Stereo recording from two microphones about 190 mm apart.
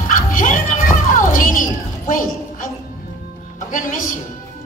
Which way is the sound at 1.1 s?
45° left (ahead or behind).